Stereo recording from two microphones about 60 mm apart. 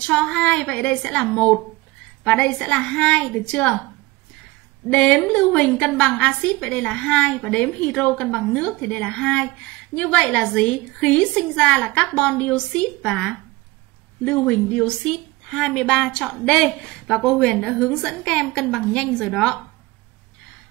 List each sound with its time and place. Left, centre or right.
0.1 s a woman's voice: centre
4.8 s a woman's voice: centre
15.5 s a woman's voice: centre